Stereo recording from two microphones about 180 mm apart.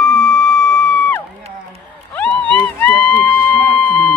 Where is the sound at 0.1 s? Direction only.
5° left (ahead or behind).